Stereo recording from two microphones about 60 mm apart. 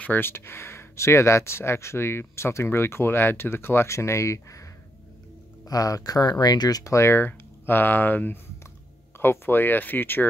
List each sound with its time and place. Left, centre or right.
0.0 s speech: left
5.7 s speech: left
7.1 s speech: left